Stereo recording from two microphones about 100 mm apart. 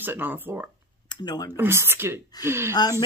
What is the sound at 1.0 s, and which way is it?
Speech, 45° left (ahead or behind).